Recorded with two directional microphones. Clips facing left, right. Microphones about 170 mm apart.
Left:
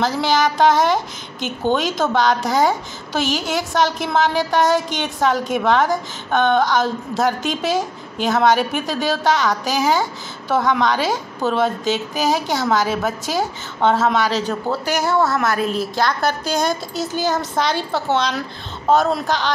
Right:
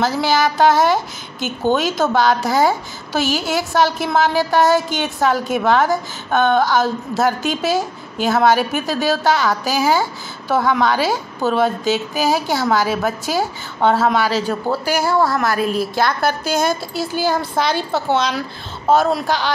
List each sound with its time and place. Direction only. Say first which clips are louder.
0.0 s a woman's voice: right 1 dB; 5° right (ahead or behind)